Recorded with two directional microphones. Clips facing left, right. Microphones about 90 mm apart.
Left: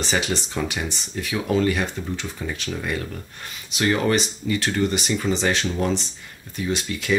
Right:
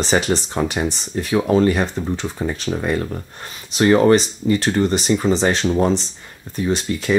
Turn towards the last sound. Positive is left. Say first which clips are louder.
# right 5 dB
turn(degrees=-35)  # may be behind; listen again after turning